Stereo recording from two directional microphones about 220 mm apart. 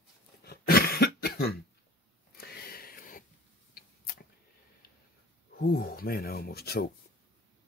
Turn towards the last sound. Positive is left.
turn(degrees=45)  # may be behind; listen again after turning